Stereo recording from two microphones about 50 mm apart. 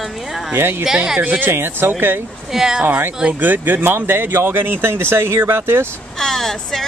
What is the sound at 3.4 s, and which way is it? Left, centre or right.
Speech, right.